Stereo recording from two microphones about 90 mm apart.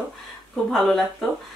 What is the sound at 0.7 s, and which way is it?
Speech, 5° left (ahead or behind).